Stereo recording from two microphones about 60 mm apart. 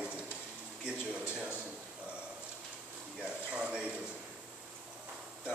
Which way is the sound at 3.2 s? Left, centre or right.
Centre.